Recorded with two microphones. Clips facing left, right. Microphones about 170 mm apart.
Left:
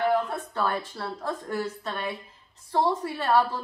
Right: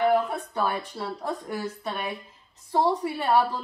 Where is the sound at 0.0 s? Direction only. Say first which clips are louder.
Right 2 dB; 10° right (ahead or behind).